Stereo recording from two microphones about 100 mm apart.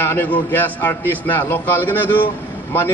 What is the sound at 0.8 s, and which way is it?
A man's voice, 20° left (ahead or behind).